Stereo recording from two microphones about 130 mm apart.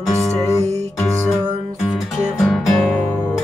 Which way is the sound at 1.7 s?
Centre (ahead or behind).